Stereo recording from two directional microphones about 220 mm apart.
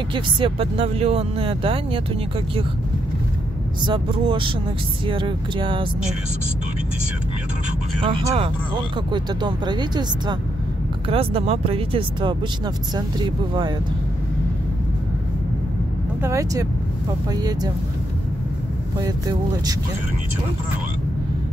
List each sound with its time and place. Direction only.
0.1 s speech: 25° right (ahead or behind)
3.8 s speech: 20° right (ahead or behind)
8.0 s speech: 25° right (ahead or behind)
16.2 s speech: 15° right (ahead or behind)
18.9 s speech: 15° right (ahead or behind)